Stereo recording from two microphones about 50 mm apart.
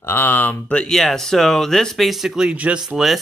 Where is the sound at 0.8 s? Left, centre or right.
Centre.